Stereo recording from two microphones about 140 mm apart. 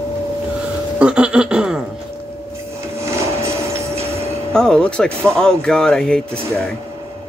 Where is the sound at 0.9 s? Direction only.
5° right (ahead or behind).